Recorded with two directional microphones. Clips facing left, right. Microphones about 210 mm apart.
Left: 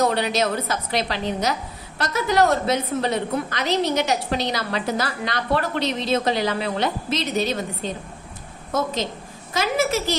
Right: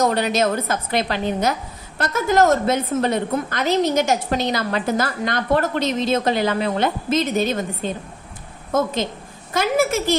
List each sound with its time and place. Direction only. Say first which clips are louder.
0.0 s a woman's voice: right 2 dB; 50° right (ahead or behind)